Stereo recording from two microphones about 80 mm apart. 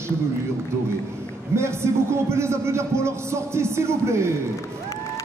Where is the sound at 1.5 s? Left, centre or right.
Right.